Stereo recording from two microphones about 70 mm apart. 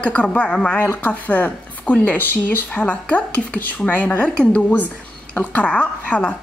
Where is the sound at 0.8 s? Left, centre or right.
Left.